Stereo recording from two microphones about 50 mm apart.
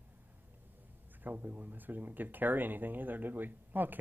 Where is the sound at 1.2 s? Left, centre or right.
Right.